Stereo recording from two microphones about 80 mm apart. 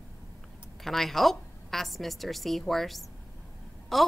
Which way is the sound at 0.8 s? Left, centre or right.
Centre.